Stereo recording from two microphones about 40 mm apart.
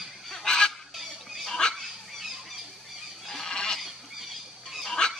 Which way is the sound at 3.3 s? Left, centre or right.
Centre.